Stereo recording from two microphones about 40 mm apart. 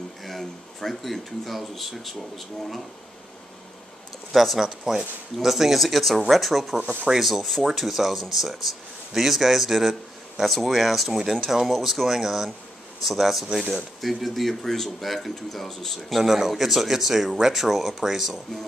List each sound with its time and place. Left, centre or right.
0.2 s speech: centre
4.3 s speech: centre
4.6 s speech: centre
7.4 s speech: centre
7.7 s a man's voice: centre
13.5 s a man's voice: centre
14.0 s speech: centre
16.2 s a man's voice: centre